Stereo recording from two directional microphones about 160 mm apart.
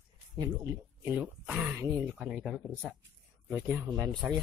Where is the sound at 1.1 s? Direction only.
10° right (ahead or behind).